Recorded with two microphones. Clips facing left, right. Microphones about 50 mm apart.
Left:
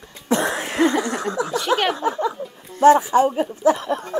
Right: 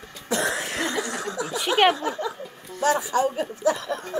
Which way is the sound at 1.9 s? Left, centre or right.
Left.